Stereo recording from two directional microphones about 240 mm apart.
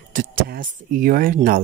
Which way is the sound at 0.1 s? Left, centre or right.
Right.